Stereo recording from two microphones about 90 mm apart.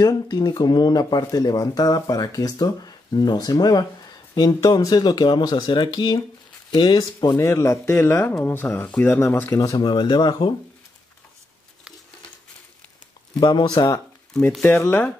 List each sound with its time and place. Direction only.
0.0 s speech: 50° left (ahead or behind)
7.3 s speech: 35° left (ahead or behind)
9.8 s speech: 55° left (ahead or behind)
13.4 s speech: 55° left (ahead or behind)
14.6 s speech: 25° left (ahead or behind)